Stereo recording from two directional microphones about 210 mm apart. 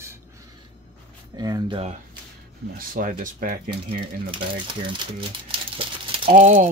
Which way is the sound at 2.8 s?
40° right (ahead or behind).